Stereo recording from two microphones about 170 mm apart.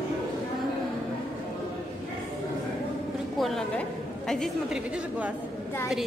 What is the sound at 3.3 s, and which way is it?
A woman's voice, centre (ahead or behind).